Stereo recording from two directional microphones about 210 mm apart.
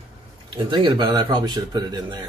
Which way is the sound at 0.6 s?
20° right (ahead or behind).